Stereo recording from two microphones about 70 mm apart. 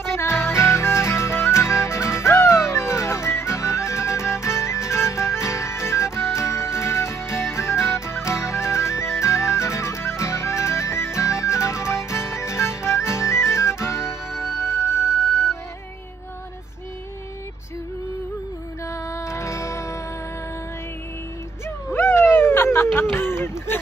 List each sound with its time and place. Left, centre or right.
0.0 s music: left
14.3 s music: centre
18.9 s music: left
21.6 s a sound: left